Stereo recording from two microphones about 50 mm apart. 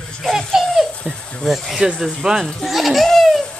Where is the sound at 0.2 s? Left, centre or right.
Centre.